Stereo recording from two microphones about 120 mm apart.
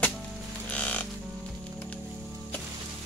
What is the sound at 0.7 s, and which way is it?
Music, 10° left (ahead or behind).